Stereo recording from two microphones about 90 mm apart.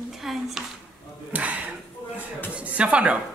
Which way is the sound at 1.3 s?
15° right (ahead or behind).